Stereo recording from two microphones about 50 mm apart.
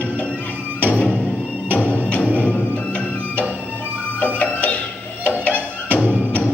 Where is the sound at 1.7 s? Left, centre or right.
Left.